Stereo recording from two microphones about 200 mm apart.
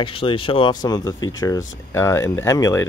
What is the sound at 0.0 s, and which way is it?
Speech, 25° left (ahead or behind).